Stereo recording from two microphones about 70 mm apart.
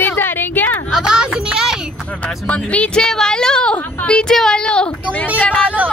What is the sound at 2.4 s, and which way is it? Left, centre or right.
A woman's voice, centre.